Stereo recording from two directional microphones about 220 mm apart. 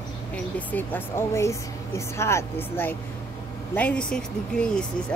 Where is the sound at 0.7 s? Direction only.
10° left (ahead or behind).